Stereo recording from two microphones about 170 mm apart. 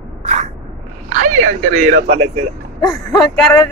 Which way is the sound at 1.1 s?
45° right (ahead or behind).